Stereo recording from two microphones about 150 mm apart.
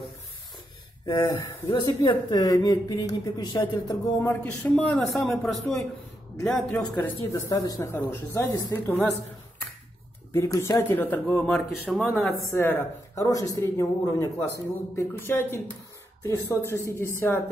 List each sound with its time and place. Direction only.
1.0 s speech: 20° left (ahead or behind)
4.2 s a man's voice: 10° left (ahead or behind)
7.0 s speech: 20° left (ahead or behind)
8.7 s speech: 10° left (ahead or behind)
10.3 s speech: 20° left (ahead or behind); by 12.2 s centre (ahead or behind)
12.5 s speech: 15° left (ahead or behind)